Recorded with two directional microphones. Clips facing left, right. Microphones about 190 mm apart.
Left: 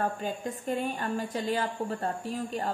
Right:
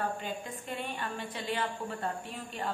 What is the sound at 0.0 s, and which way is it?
A woman's voice, 40° left (ahead or behind).